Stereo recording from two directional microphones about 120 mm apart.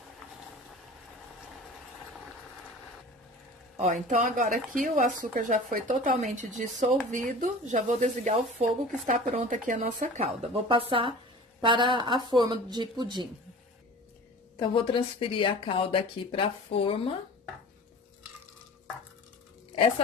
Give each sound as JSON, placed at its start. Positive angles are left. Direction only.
{"t": 3.7, "sound": "a woman's voice", "side_deg": -90}
{"t": 10.2, "sound": "speech", "side_deg": -50}
{"t": 14.6, "sound": "speech", "side_deg": 45}